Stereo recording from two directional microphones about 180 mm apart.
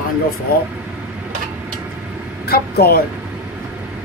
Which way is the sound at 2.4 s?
60° left (ahead or behind).